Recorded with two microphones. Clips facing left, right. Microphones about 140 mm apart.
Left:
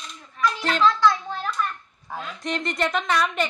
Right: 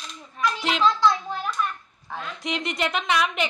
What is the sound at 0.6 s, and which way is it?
Speech, 15° right (ahead or behind).